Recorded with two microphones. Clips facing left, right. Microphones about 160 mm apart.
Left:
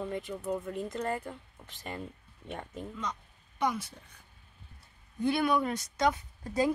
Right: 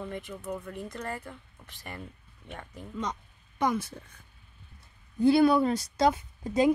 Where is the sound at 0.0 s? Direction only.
20° left (ahead or behind).